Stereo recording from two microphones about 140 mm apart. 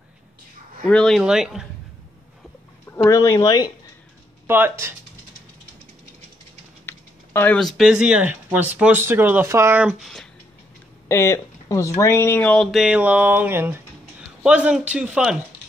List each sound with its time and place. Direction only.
0.8 s speech: 5° left (ahead or behind)
2.9 s speech: 20° left (ahead or behind)
4.5 s speech: 15° right (ahead or behind)
6.9 s typing: 15° left (ahead or behind)
7.5 s speech: centre (ahead or behind)
11.1 s speech: 20° left (ahead or behind)
12.7 s speech: 5° right (ahead or behind)